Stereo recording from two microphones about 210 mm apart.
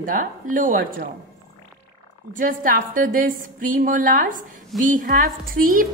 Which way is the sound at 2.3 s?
40° right (ahead or behind).